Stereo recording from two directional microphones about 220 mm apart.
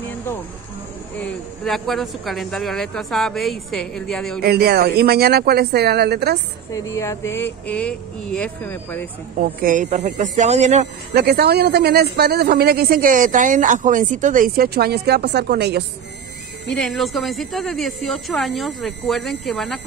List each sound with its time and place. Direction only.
1.2 s speech: centre (ahead or behind)
4.4 s speech: 45° right (ahead or behind)
6.7 s speech: 15° left (ahead or behind)
9.4 s speech: 40° right (ahead or behind)
11.1 s speech: 45° right (ahead or behind)
16.6 s speech: centre (ahead or behind)